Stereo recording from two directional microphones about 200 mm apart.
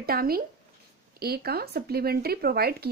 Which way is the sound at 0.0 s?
50° right (ahead or behind).